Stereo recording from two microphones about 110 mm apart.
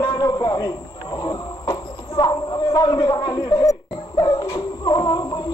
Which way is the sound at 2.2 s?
40° left (ahead or behind).